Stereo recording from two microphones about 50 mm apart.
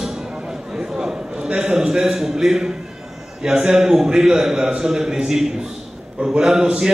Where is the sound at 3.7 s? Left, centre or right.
Centre.